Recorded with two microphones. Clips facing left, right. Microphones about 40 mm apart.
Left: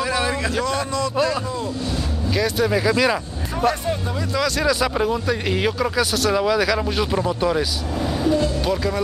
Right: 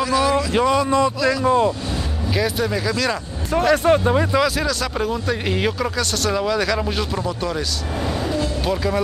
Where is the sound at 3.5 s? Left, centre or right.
Right.